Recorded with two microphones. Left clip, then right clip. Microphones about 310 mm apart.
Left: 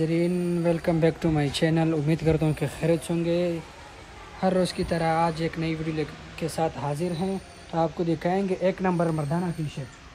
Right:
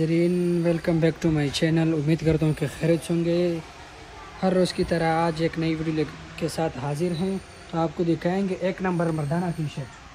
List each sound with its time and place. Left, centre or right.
0.0 s speech: left